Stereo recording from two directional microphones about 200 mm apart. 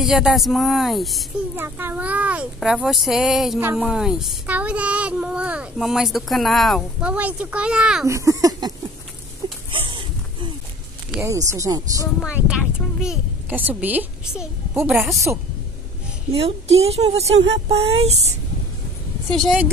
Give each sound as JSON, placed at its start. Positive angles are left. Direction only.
{"t": 0.0, "sound": "speech", "side_deg": 0}
{"t": 1.6, "sound": "speech", "side_deg": -10}
{"t": 8.1, "sound": "speech", "side_deg": -15}
{"t": 9.7, "sound": "a sound", "side_deg": -25}
{"t": 11.2, "sound": "speech", "side_deg": -15}
{"t": 12.2, "sound": "a woman's voice", "side_deg": -5}
{"t": 16.3, "sound": "a woman's voice", "side_deg": -30}
{"t": 16.8, "sound": "a sound", "side_deg": -30}
{"t": 19.3, "sound": "speech", "side_deg": 0}